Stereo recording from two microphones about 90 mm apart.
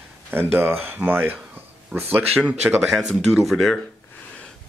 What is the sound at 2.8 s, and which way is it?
Speech, 5° right (ahead or behind).